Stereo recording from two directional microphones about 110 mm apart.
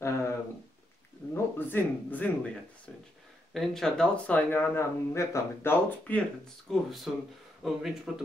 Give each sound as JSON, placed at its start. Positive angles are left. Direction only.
{"t": 0.0, "sound": "a sound", "side_deg": 25}
{"t": 1.3, "sound": "speech", "side_deg": 20}
{"t": 3.5, "sound": "speech", "side_deg": 5}
{"t": 6.7, "sound": "speech", "side_deg": 5}